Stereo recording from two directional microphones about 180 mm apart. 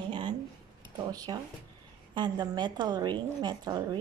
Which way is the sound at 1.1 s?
20° right (ahead or behind).